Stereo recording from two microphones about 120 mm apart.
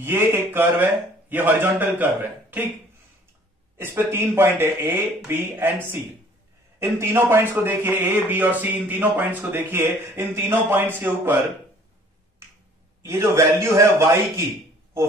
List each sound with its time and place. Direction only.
0.0 s speech: 20° right (ahead or behind)
3.7 s speech: 20° right (ahead or behind)
13.0 s speech: 20° right (ahead or behind)